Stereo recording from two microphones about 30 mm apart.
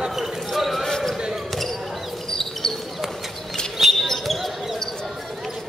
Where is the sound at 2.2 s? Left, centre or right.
Centre.